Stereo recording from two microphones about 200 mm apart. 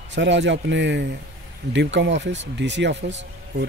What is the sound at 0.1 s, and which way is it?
Speech, 60° right (ahead or behind).